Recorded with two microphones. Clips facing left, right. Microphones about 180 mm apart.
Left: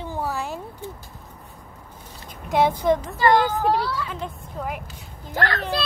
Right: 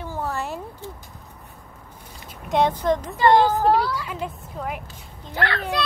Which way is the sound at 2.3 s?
5° left (ahead or behind).